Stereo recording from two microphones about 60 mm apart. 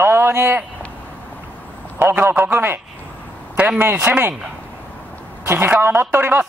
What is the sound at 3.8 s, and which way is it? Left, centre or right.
Speech, right.